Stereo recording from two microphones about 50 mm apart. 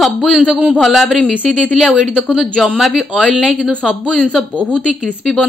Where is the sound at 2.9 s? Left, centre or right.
Centre.